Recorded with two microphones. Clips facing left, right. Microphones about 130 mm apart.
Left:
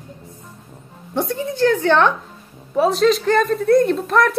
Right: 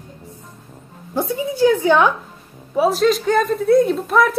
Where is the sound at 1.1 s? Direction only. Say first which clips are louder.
Right 1 dB; 5° right (ahead or behind).